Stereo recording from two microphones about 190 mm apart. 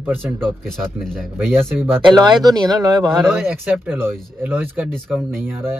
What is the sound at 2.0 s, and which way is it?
Speech, 25° right (ahead or behind).